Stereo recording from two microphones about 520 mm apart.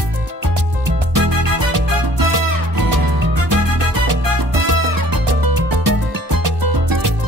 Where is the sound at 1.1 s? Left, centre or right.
Right.